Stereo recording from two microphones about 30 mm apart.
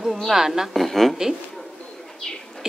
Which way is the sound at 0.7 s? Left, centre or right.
Centre.